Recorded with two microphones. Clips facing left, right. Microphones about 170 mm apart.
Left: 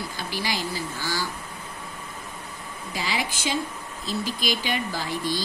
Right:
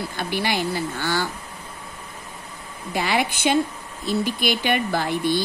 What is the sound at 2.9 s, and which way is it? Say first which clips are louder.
Speech: right 7 dB; 60° right (ahead or behind).